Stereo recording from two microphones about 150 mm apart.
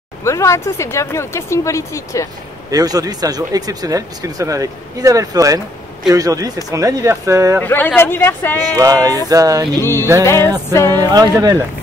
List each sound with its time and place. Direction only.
0.2 s speech: 20° left (ahead or behind)
2.7 s speech: 25° right (ahead or behind)
7.6 s speech: 15° left (ahead or behind)
8.7 s speech: 25° right (ahead or behind)
9.8 s speech: 15° left (ahead or behind)